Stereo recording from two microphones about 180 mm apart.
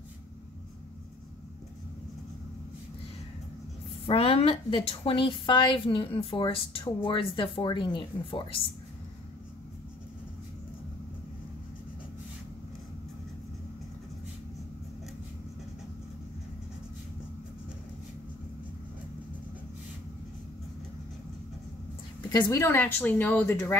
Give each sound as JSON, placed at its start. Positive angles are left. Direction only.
{"t": 4.1, "sound": "a woman's voice", "side_deg": 30}
{"t": 22.3, "sound": "a woman's voice", "side_deg": 20}